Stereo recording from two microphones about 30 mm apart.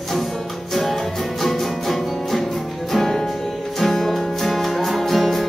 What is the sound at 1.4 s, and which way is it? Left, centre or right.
Music, centre.